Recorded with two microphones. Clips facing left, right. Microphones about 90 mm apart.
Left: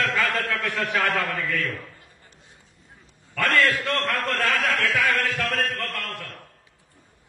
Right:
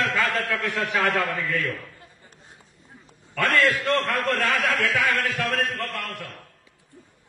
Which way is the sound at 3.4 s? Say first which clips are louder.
Even; 15° right (ahead or behind).